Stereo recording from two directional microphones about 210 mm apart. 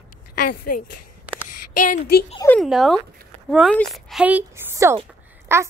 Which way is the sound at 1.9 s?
50° left (ahead or behind).